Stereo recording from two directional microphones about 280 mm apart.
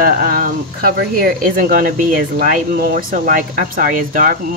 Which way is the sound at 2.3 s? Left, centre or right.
Right.